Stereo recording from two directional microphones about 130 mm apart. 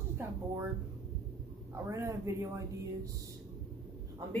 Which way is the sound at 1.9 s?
25° right (ahead or behind).